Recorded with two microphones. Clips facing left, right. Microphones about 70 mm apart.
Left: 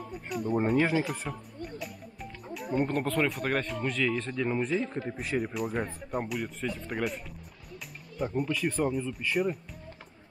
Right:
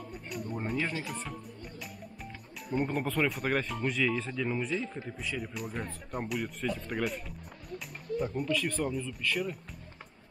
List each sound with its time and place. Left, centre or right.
0.1 s speech: centre
2.7 s speech: centre
4.3 s speech: centre
4.6 s speech: left
5.1 s speech: left
5.5 s speech: centre
8.4 s speech: centre